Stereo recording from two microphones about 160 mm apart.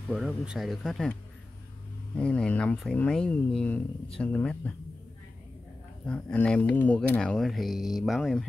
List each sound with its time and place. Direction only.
0.1 s speech: 5° right (ahead or behind)
2.1 s speech: 5° left (ahead or behind)
6.0 s speech: 5° left (ahead or behind)